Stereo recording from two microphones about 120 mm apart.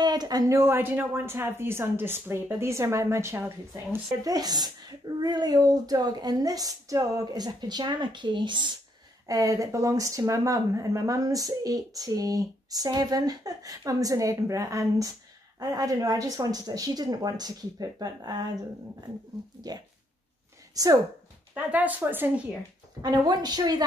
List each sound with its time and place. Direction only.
0.0 s speech: 35° right (ahead or behind); by 4.0 s 20° right (ahead or behind)
4.2 s speech: 30° right (ahead or behind)
9.3 s speech: 25° right (ahead or behind)
19.7 s speech: 35° right (ahead or behind)
21.5 s a woman's voice: 15° right (ahead or behind)
23.0 s speech: 35° right (ahead or behind)